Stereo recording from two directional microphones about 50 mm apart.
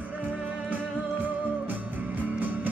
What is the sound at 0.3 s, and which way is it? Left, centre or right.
Music, right.